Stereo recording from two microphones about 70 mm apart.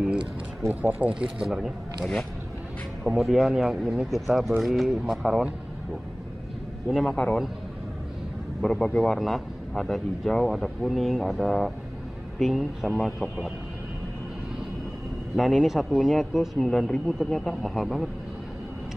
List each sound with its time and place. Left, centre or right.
0.7 s speech: right
1.4 s speech: centre
3.0 s speech: centre
6.9 s speech: centre
8.6 s speech: centre
15.3 s speech: centre